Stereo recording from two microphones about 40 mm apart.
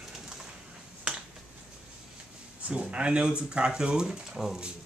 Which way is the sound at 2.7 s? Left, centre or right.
Right.